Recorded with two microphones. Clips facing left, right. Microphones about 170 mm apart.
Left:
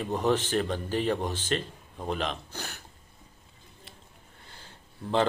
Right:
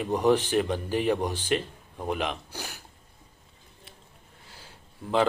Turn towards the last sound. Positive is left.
turn(degrees=-5)  # may be behind; listen again after turning